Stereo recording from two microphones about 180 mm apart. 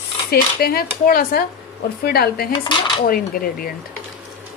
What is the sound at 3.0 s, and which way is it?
Dishes, 55° left (ahead or behind).